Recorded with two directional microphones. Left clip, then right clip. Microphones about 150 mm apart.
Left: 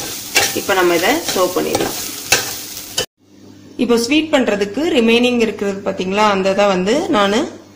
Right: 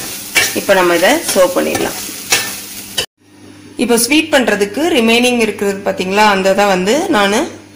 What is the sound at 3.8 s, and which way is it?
A woman's voice, 35° right (ahead or behind).